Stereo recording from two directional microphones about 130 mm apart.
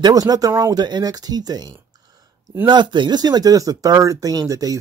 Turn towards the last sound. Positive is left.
turn(degrees=-30)  # may be behind; listen again after turning